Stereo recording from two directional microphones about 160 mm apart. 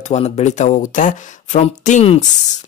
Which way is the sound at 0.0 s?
45° left (ahead or behind).